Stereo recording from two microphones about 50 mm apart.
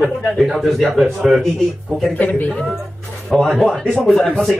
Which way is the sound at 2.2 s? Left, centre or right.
Left.